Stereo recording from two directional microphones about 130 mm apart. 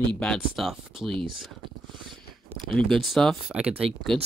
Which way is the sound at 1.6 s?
40° right (ahead or behind).